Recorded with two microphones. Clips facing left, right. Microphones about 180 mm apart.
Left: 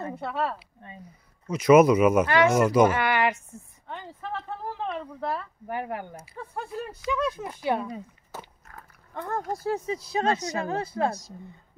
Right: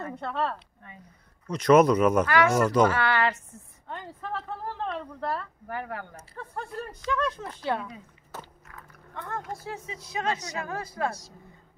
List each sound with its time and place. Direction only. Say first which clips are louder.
0.1 s speech: right 1 dB; 5° left (ahead or behind)
2.2 s speech: left 2 dB; 20° left (ahead or behind)
2.5 s speech: left 2 dB; 10° left (ahead or behind)
3.9 s a woman's voice: even; centre (ahead or behind)
5.7 s speech: left 4 dB; 20° left (ahead or behind)
8.6 s speech: even; 35° left (ahead or behind)